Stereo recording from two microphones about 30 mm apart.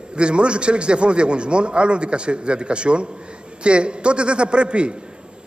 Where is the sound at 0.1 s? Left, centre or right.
Right.